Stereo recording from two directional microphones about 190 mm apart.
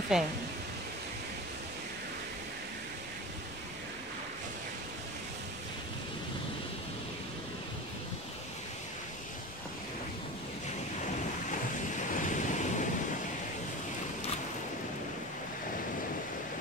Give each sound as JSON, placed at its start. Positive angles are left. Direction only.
{"t": 0.1, "sound": "speech", "side_deg": -5}
{"t": 12.1, "sound": "waves", "side_deg": 40}